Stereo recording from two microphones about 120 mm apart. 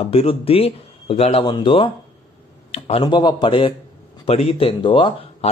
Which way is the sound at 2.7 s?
55° left (ahead or behind).